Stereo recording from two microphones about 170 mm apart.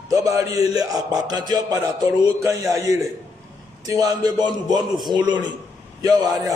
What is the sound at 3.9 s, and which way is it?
A man's voice, 20° right (ahead or behind).